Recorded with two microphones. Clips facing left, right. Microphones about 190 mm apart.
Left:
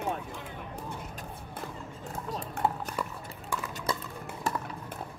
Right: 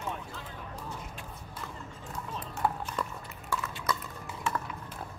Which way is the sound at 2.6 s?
60° left (ahead or behind).